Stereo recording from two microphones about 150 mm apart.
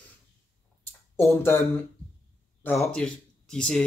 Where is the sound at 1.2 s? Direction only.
15° left (ahead or behind).